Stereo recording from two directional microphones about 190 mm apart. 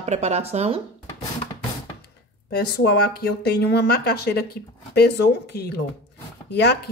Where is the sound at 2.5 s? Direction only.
60° left (ahead or behind).